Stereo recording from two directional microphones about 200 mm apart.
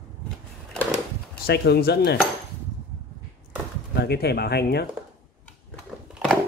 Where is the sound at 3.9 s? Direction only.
55° left (ahead or behind).